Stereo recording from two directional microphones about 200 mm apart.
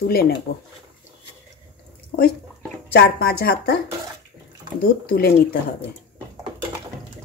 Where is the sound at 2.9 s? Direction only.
50° left (ahead or behind).